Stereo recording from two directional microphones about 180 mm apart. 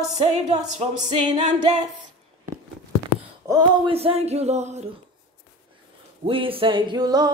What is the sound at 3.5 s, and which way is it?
Music, 20° right (ahead or behind).